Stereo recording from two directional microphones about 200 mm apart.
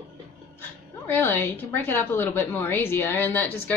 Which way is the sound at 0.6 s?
10° left (ahead or behind).